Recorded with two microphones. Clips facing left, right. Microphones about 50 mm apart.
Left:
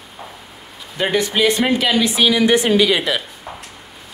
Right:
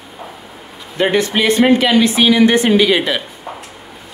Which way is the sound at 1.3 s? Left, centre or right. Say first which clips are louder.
Right 5 dB; right.